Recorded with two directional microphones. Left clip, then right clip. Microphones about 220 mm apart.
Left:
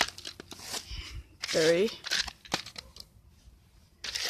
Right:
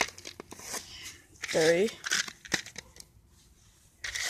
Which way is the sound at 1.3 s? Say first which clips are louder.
Even; 10° right (ahead or behind).